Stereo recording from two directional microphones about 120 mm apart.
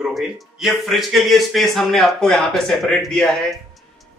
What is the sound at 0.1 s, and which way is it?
Speech, centre (ahead or behind).